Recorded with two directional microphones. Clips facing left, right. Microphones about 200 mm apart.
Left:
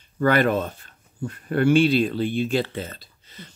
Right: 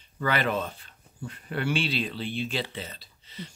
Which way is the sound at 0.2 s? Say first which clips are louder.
Left 8 dB; 50° left (ahead or behind).